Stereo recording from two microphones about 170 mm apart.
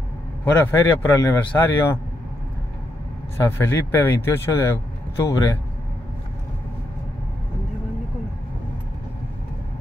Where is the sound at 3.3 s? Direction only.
15° left (ahead or behind).